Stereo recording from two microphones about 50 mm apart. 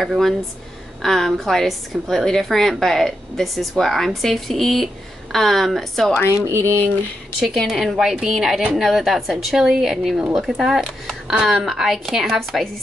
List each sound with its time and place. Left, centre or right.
1.0 s a woman's voice: centre
6.4 s speech: right
7.3 s a woman's voice: centre